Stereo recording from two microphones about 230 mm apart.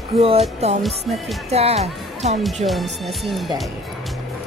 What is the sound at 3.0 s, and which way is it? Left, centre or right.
Speech, centre.